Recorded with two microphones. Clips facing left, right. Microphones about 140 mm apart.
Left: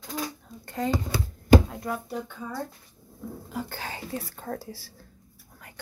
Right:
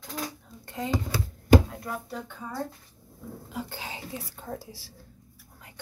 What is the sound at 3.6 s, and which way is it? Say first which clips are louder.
Speech: left 2 dB; 55° left (ahead or behind).